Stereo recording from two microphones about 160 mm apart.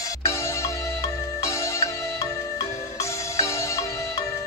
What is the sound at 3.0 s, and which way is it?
Music, 20° left (ahead or behind).